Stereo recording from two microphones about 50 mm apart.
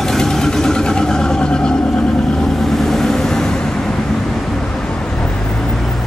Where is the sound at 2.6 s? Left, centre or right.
Centre.